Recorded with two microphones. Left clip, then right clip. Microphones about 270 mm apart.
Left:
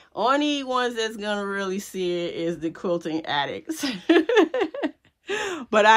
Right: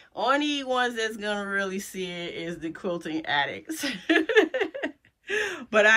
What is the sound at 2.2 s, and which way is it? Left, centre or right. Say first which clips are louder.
Speech: left 6 dB; centre.